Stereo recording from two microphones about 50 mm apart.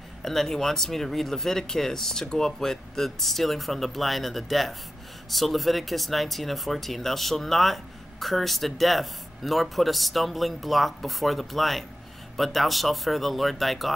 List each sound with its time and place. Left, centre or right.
0.2 s speech: centre